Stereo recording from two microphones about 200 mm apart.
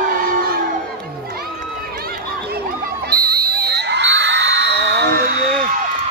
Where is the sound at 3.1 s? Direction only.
50° right (ahead or behind).